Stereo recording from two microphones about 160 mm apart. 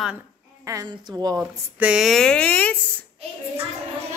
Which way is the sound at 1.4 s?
5° right (ahead or behind).